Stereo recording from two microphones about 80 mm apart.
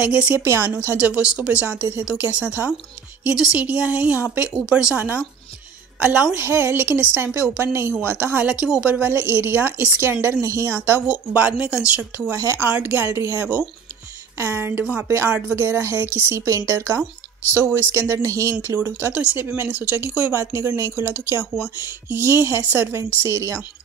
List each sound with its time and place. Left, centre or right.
0.0 s speech: centre
0.4 s speech: right
0.9 s speech: centre
4.9 s a woman's voice: right
6.3 s speech: right
11.0 s speech: centre
12.3 s speech: right
12.6 s speech: right
18.8 s speech: right
20.3 s speech: right